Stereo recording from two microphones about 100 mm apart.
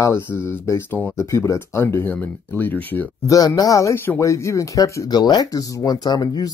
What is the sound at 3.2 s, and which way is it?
Speech, 35° left (ahead or behind).